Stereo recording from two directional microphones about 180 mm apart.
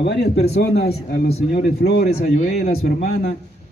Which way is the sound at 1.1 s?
55° left (ahead or behind).